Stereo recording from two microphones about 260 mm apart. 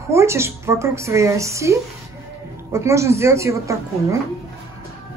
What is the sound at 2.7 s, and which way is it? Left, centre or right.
Speech, centre.